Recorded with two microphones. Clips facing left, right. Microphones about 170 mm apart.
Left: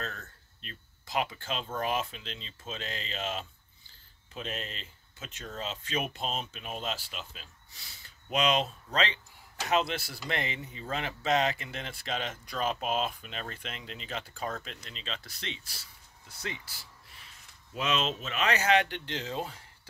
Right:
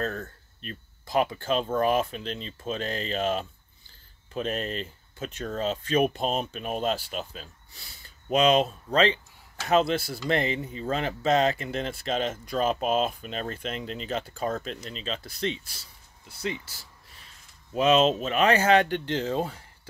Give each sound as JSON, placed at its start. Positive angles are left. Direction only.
{"t": 0.0, "sound": "speech", "side_deg": -50}
{"t": 17.7, "sound": "speech", "side_deg": -40}